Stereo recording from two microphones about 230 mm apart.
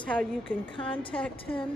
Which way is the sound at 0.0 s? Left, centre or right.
Centre.